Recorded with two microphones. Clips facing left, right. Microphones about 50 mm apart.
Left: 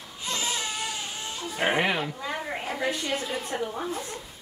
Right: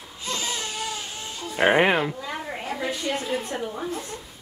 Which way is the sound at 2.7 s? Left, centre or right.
Centre.